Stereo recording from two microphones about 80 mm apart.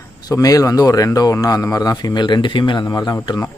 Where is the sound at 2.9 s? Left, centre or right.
Left.